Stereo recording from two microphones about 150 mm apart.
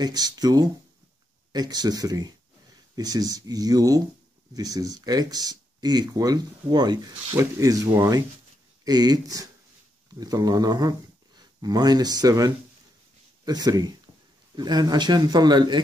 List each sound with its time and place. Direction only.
0.0 s speech: 25° right (ahead or behind)